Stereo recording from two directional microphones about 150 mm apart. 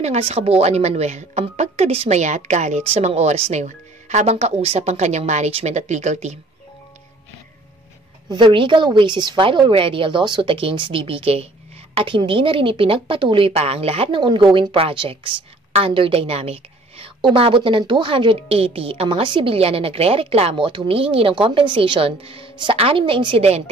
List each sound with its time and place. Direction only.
0.0 s a woman's voice: 45° right (ahead or behind)
8.3 s a woman's voice: 30° right (ahead or behind)